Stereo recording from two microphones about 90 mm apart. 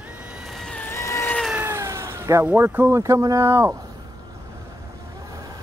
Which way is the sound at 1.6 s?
35° right (ahead or behind).